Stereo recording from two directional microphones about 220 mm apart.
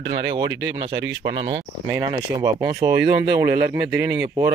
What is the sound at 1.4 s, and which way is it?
Speech, 20° right (ahead or behind).